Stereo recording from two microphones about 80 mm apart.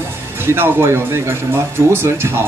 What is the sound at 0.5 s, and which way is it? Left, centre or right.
A man's voice, right.